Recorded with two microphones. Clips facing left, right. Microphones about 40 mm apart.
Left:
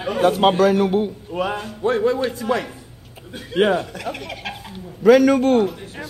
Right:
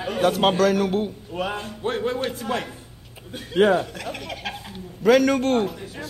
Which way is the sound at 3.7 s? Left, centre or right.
Centre.